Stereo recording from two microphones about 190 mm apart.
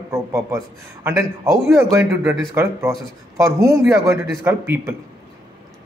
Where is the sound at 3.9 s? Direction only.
15° right (ahead or behind).